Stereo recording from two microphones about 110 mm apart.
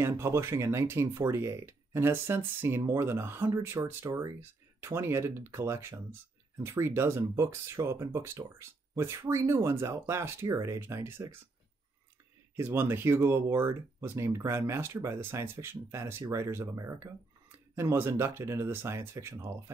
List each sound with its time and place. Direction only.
0.1 s speech: 25° right (ahead or behind)
4.0 s speech: 35° right (ahead or behind)
4.4 s speech: 20° right (ahead or behind)
12.5 s speech: 20° right (ahead or behind)